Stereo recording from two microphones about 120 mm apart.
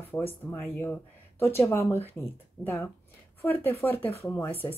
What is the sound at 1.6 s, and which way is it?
Speech, 20° left (ahead or behind).